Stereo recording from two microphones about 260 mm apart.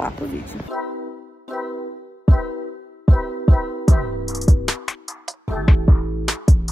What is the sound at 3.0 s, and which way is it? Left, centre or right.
Music, centre.